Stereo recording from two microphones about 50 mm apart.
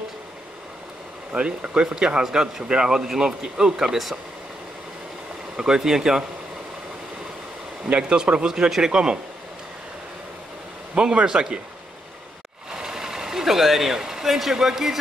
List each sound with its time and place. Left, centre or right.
1.3 s speech: right
5.6 s speech: centre
7.9 s speech: right
11.0 s speech: centre
12.7 s speech: centre